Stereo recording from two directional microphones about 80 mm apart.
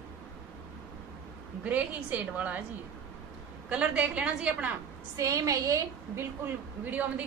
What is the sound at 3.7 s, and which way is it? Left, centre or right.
A woman's voice, centre.